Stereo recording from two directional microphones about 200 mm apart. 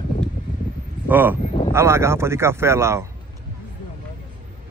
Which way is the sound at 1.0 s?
10° right (ahead or behind).